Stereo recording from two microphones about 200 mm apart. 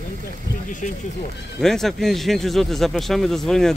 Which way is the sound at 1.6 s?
Centre (ahead or behind).